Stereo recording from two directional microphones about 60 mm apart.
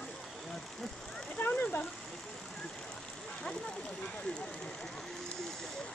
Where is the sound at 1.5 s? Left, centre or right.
Left.